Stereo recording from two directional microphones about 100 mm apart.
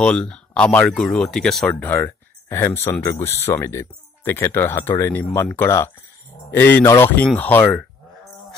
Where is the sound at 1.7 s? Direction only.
20° left (ahead or behind).